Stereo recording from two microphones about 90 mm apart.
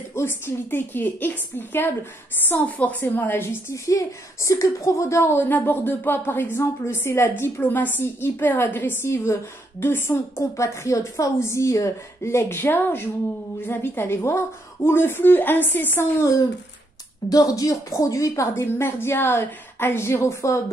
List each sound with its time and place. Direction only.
0.1 s a woman's voice: 25° left (ahead or behind)